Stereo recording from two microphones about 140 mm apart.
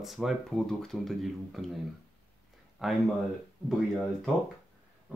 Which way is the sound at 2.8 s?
5° right (ahead or behind).